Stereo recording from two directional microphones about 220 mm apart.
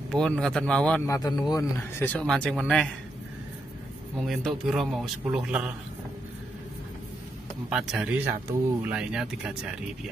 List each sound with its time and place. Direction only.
0.1 s a man's voice: 5° left (ahead or behind)
4.2 s a man's voice: centre (ahead or behind)
7.7 s a man's voice: 5° right (ahead or behind)